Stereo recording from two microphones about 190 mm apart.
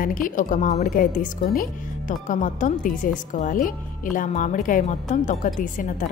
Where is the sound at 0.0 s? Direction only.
45° left (ahead or behind).